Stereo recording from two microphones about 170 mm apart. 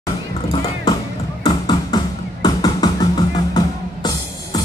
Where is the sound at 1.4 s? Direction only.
25° left (ahead or behind).